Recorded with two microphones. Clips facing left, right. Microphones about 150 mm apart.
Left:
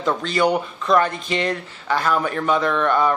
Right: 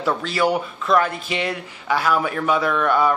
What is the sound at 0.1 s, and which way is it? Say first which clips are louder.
Speech: left 1 dB; 5° right (ahead or behind).